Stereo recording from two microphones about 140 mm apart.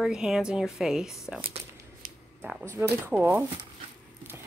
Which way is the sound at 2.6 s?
20° right (ahead or behind).